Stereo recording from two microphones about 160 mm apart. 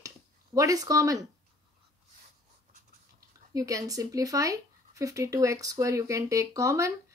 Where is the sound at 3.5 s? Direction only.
20° right (ahead or behind).